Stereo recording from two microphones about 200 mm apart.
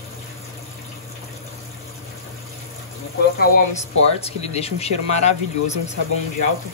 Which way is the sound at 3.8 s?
30° left (ahead or behind).